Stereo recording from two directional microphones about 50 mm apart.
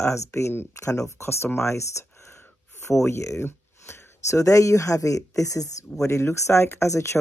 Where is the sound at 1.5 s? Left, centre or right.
Left.